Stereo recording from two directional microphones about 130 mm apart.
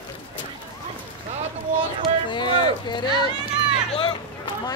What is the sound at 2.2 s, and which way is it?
Speech, 35° left (ahead or behind).